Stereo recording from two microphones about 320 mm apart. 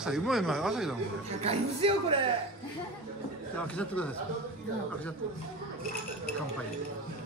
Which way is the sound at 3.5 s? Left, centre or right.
Centre.